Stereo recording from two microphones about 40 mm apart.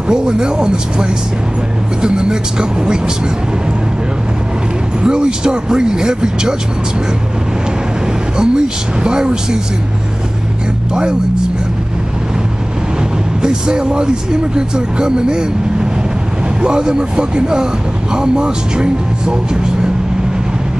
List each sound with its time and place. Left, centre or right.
0.1 s speech: centre
5.0 s speech: right
8.4 s speech: right
11.0 s speech: centre
13.4 s speech: right